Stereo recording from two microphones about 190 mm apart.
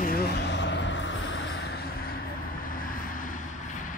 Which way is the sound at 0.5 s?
70° left (ahead or behind).